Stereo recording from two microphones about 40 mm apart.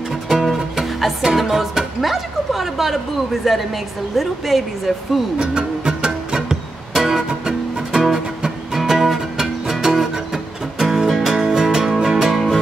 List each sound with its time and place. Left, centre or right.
0.1 s music: centre
3.4 s a woman's voice: centre
5.4 s music: right